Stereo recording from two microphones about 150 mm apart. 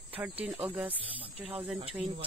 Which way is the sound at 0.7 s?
10° right (ahead or behind).